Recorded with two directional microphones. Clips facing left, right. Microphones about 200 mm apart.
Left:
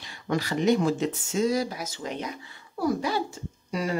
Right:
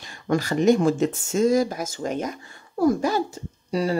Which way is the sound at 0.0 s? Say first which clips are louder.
Right 4 dB; 45° right (ahead or behind).